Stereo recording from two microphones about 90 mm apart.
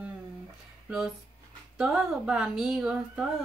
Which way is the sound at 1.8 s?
10° right (ahead or behind).